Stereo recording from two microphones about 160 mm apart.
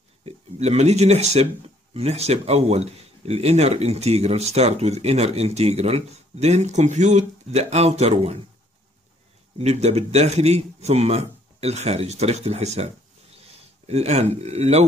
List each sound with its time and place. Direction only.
0.2 s a man's voice: 40° right (ahead or behind)
9.6 s a man's voice: 45° right (ahead or behind)